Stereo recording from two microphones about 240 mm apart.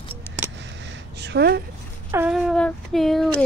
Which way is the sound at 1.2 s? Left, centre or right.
Right.